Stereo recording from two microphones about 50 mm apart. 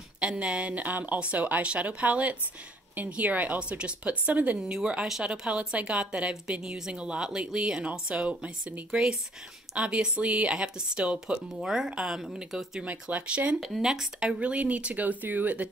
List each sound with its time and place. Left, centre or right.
0.2 s speech: centre
4.6 s speech: centre
9.8 s speech: right
12.8 s speech: right
13.6 s speech: centre
14.4 s speech: right